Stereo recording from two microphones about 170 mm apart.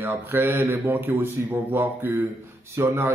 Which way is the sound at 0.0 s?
15° right (ahead or behind).